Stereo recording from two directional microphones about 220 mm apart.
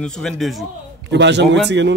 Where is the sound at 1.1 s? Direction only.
55° right (ahead or behind).